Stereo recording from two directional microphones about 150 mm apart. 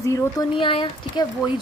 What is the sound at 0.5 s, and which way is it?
Speech, 35° left (ahead or behind).